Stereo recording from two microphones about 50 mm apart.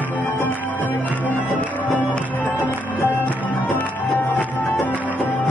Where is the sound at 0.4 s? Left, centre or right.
Left.